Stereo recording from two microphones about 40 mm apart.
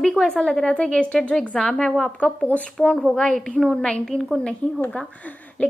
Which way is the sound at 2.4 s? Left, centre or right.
Left.